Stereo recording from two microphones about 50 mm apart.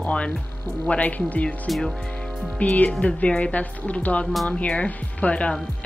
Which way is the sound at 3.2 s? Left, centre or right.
Left.